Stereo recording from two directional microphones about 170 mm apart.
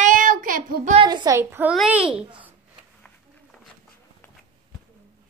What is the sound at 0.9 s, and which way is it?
A woman's voice, 25° right (ahead or behind).